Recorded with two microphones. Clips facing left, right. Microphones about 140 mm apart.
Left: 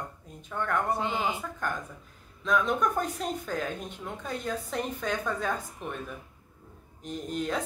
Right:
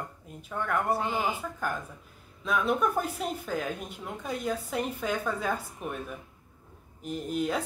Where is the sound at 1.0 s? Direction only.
20° left (ahead or behind).